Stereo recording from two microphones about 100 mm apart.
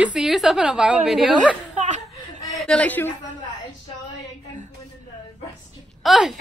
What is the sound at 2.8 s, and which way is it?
Speech, 20° left (ahead or behind).